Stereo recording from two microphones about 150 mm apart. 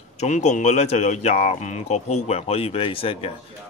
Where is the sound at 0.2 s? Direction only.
50° left (ahead or behind).